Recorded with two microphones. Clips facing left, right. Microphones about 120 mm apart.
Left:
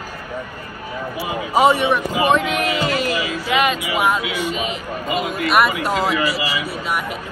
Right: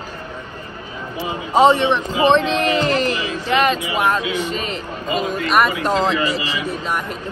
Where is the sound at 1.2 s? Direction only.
10° left (ahead or behind).